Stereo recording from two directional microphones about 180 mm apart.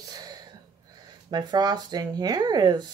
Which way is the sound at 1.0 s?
20° right (ahead or behind).